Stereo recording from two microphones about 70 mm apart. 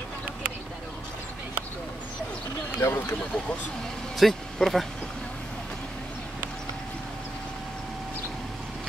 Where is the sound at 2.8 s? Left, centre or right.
Left.